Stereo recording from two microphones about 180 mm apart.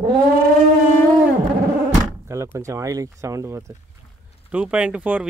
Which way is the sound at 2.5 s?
15° right (ahead or behind).